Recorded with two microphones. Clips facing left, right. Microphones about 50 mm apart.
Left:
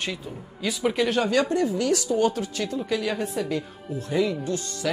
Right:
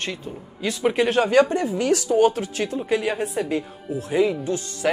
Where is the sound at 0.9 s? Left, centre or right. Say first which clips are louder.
Right 6 dB; right.